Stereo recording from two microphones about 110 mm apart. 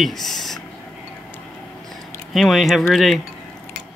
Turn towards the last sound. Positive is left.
turn(degrees=0)  # may be behind; listen again after turning